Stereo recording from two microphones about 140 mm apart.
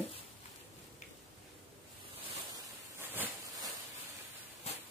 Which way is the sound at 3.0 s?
15° right (ahead or behind).